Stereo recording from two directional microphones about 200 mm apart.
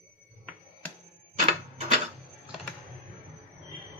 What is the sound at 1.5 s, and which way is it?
Printer, 35° right (ahead or behind).